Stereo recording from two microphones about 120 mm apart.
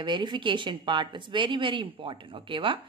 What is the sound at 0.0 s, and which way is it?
A woman's voice, 40° right (ahead or behind).